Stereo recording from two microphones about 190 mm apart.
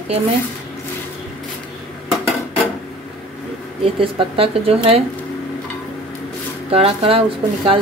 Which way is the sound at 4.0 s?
30° right (ahead or behind).